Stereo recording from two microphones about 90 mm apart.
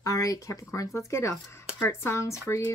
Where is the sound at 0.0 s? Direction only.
40° left (ahead or behind).